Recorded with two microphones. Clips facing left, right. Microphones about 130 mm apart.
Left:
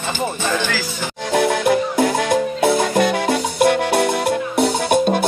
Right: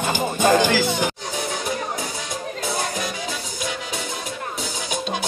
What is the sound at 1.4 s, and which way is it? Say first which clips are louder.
Music: left 13 dB; 70° left (ahead or behind).